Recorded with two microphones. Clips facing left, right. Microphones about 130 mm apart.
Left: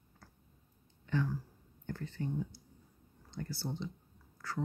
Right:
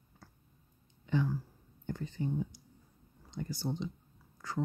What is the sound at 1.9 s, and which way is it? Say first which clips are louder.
Speech: right 3 dB; 15° right (ahead or behind).